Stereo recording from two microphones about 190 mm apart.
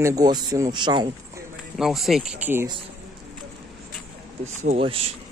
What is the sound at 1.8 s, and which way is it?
Speech, centre (ahead or behind).